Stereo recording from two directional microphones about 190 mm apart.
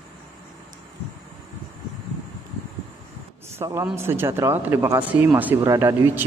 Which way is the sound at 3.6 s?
15° right (ahead or behind).